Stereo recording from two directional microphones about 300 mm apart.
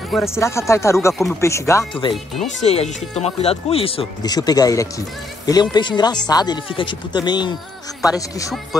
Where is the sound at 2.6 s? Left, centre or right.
Left.